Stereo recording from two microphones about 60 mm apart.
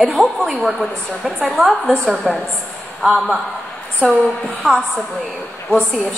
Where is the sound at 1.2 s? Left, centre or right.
Right.